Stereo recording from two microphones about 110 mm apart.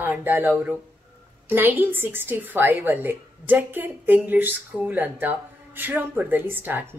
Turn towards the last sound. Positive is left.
turn(degrees=-20)  # may be behind; listen again after turning